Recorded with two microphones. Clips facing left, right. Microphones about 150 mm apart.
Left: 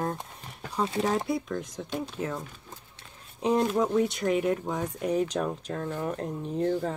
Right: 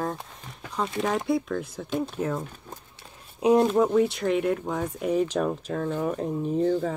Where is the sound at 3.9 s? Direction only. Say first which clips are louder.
Right 3 dB; centre (ahead or behind).